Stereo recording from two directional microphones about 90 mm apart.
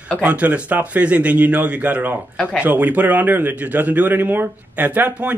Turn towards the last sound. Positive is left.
turn(degrees=-20)  # may be behind; listen again after turning